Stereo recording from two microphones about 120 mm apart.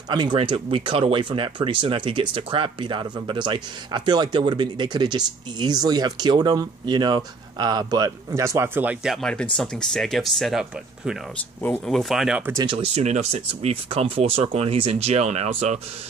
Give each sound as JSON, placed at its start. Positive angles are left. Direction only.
{"t": 0.1, "sound": "speech", "side_deg": -40}
{"t": 9.0, "sound": "speech", "side_deg": 0}
{"t": 12.6, "sound": "speech", "side_deg": -55}